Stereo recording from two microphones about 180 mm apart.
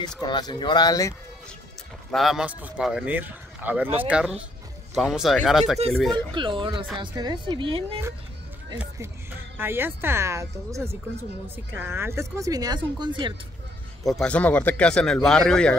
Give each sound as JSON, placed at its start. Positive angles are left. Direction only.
{"t": 0.2, "sound": "speech", "side_deg": 25}
{"t": 2.0, "sound": "speech", "side_deg": 0}
{"t": 6.1, "sound": "speech", "side_deg": -25}
{"t": 9.6, "sound": "speech", "side_deg": -10}
{"t": 14.0, "sound": "speech", "side_deg": 5}